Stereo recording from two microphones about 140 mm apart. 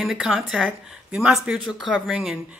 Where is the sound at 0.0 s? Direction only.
5° right (ahead or behind).